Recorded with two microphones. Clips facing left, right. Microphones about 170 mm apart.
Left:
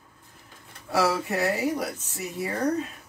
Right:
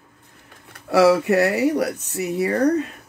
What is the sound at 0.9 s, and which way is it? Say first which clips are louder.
Speech: right 9 dB; 70° right (ahead or behind).